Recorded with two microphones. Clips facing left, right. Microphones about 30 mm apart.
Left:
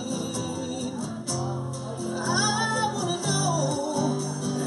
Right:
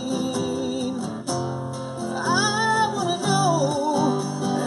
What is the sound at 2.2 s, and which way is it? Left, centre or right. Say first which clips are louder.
Music: right 4 dB; centre.